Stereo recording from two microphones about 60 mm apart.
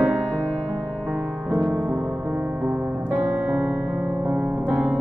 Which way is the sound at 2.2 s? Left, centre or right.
Right.